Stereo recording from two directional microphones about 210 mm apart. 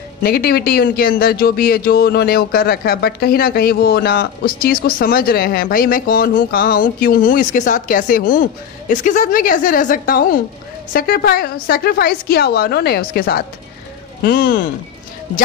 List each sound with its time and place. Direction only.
0.2 s speech: 50° left (ahead or behind)